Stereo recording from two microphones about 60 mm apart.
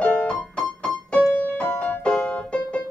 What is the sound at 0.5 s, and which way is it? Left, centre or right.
Keyboard, centre.